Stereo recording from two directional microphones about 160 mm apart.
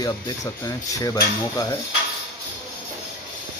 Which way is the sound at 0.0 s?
20° left (ahead or behind).